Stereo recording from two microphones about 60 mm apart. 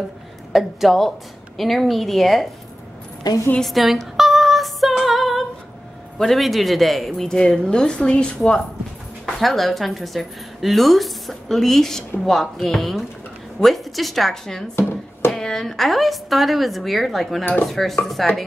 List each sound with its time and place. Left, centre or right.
0.5 s a woman's voice: centre
3.6 s female singing: centre
6.1 s a woman's voice: centre
9.2 s a woman's voice: centre
14.8 s hands: left
15.3 s a woman's voice: centre